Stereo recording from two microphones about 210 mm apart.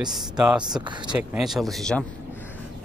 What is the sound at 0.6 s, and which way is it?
Speech, 20° right (ahead or behind).